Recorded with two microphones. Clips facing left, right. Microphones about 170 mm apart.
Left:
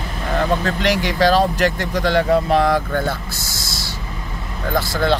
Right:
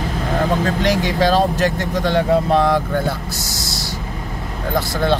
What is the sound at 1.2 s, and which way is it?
Speech, 20° right (ahead or behind).